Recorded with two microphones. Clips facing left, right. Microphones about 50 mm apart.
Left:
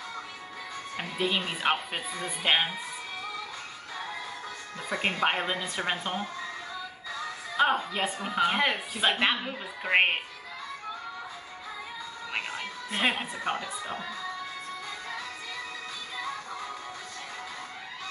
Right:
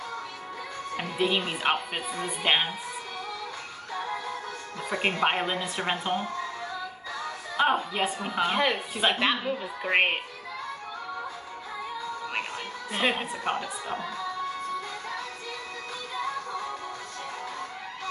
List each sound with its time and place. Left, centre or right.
0.9 s a woman's voice: centre
4.8 s a woman's voice: centre
7.5 s a woman's voice: centre
8.5 s speech: centre
12.5 s music: centre